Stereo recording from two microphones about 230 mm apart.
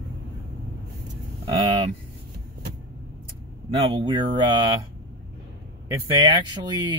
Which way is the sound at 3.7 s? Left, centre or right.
Right.